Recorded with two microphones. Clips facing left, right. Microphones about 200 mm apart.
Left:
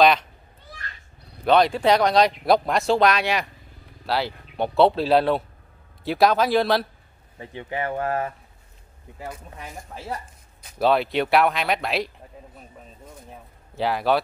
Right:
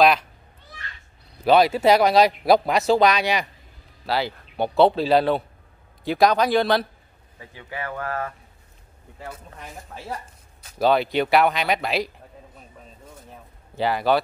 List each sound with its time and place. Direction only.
1.4 s speech: 5° right (ahead or behind)
7.3 s speech: 25° left (ahead or behind)
9.6 s speech: centre (ahead or behind)
13.3 s a sound: centre (ahead or behind)